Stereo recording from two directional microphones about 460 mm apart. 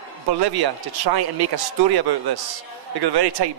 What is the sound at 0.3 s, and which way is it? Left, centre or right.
A man's voice, right.